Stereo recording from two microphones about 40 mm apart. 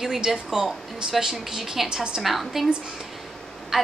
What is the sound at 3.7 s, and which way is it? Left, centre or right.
Vehicle, centre.